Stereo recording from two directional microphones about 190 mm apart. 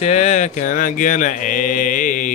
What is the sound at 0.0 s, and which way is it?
Mantra, 35° left (ahead or behind).